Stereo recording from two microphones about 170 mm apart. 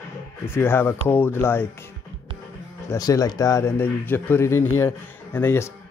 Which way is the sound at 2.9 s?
20° left (ahead or behind).